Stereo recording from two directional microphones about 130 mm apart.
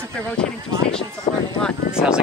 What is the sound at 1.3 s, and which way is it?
Speech, 45° left (ahead or behind).